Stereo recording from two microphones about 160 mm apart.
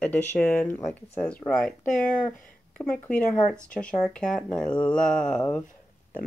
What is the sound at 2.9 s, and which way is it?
Speech, 5° left (ahead or behind).